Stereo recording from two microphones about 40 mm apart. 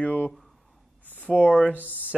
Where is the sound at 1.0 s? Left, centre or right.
Left.